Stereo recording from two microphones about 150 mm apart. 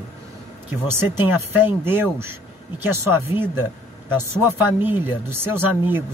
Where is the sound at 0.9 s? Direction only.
15° right (ahead or behind).